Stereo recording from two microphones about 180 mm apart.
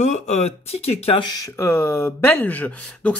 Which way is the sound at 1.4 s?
15° left (ahead or behind).